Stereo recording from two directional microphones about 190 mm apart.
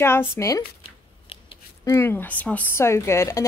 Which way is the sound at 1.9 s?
10° left (ahead or behind).